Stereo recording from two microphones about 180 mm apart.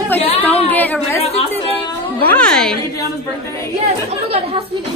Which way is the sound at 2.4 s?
5° left (ahead or behind).